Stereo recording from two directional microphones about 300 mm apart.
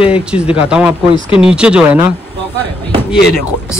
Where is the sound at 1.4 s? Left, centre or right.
Centre.